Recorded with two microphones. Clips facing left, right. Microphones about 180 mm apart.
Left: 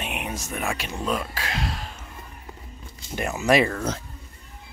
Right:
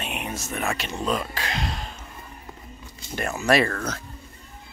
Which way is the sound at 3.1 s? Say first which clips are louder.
Left 1 dB; 15° left (ahead or behind).